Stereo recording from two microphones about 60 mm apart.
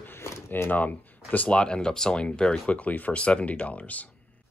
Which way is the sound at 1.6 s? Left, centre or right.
Centre.